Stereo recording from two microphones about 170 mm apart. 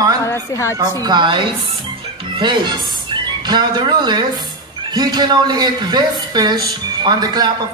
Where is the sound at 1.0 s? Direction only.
25° right (ahead or behind).